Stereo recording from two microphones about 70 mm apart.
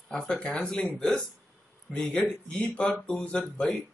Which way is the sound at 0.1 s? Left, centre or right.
Centre.